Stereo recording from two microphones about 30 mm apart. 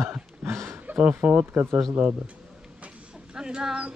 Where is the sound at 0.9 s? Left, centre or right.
Right.